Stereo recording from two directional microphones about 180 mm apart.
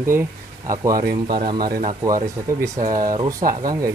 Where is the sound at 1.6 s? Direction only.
55° right (ahead or behind).